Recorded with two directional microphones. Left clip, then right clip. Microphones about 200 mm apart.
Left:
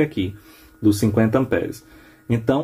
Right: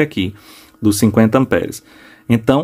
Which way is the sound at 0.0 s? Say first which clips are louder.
Right 4 dB; 40° right (ahead or behind).